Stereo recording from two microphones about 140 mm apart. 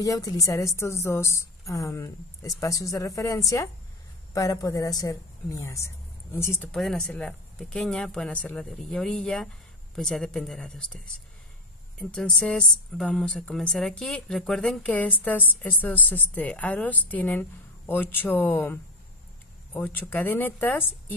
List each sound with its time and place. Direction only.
0.0 s a woman's voice: 25° left (ahead or behind)
6.7 s speech: 5° left (ahead or behind)
12.0 s a woman's voice: 10° left (ahead or behind)